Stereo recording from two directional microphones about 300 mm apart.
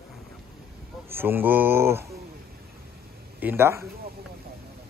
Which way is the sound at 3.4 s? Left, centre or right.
Centre.